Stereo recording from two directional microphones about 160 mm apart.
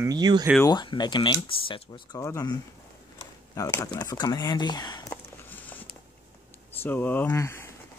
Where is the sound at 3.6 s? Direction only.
20° left (ahead or behind).